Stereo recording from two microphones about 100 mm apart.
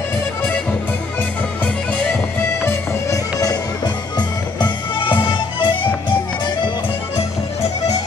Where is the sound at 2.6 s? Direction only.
30° left (ahead or behind).